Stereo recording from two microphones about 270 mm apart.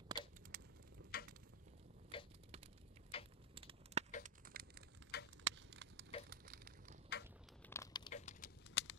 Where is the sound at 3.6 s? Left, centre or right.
Centre.